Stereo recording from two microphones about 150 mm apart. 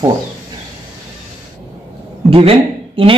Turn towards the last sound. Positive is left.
turn(degrees=-35)  # may be behind; listen again after turning